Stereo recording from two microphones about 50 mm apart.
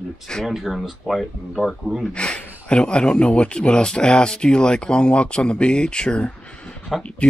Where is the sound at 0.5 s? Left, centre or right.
Centre.